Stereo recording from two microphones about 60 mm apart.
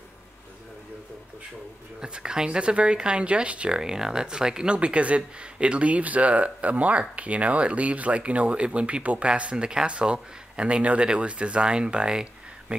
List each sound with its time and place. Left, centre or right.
2.0 s speech: centre